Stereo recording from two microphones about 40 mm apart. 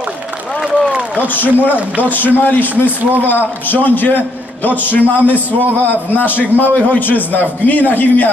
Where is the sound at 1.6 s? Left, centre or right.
Right.